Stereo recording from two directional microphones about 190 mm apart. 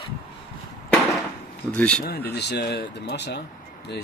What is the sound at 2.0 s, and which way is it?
Speech, 55° left (ahead or behind).